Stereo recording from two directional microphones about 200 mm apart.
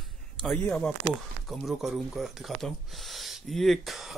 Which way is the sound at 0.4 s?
Centre (ahead or behind).